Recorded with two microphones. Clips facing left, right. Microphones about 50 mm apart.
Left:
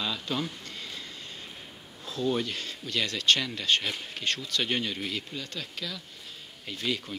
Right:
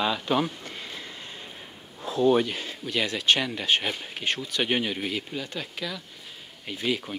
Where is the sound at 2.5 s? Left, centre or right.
Centre.